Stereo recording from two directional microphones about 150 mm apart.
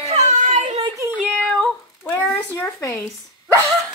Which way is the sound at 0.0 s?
50° right (ahead or behind).